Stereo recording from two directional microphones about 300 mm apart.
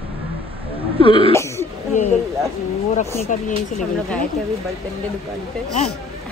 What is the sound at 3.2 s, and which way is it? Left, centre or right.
Speech, left.